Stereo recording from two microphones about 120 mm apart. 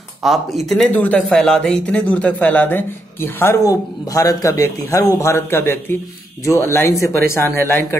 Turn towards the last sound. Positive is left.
turn(degrees=20)  # may be behind; listen again after turning